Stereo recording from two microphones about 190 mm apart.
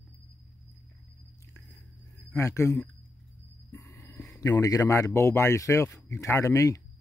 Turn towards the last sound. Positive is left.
turn(degrees=15)  # may be behind; listen again after turning